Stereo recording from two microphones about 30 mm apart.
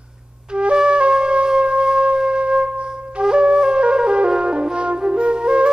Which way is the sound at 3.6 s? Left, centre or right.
Right.